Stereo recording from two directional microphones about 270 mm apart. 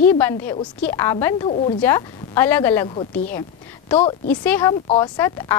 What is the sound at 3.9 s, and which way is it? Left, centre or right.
Speech, left.